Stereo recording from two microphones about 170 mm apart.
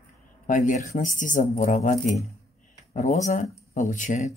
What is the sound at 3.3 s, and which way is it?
Speech, 50° left (ahead or behind).